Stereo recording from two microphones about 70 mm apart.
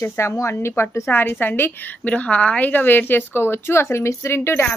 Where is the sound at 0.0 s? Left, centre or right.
Left.